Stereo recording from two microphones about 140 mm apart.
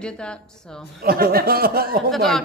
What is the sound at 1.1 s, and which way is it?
Speech, 90° right.